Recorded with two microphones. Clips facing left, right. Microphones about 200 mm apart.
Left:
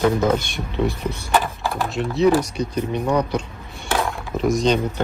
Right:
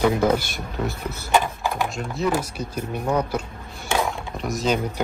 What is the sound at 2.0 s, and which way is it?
Speech, centre (ahead or behind).